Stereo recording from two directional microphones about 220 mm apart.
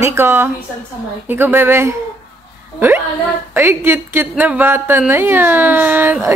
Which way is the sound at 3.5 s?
10° right (ahead or behind).